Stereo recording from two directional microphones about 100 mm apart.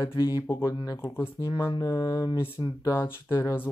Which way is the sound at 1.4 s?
40° left (ahead or behind).